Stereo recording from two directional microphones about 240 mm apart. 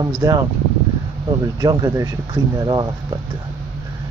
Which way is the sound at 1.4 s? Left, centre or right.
Centre.